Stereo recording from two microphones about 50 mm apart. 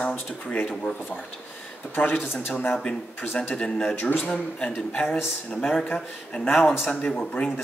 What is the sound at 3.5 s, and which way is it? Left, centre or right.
Speech, centre.